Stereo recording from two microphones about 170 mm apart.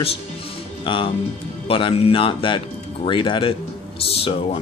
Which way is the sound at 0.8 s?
30° left (ahead or behind).